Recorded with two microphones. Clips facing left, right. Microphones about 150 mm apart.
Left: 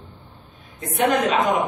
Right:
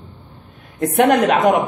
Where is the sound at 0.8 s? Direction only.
65° right (ahead or behind).